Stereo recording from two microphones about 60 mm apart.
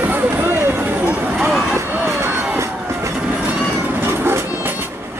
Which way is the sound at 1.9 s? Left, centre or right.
Right.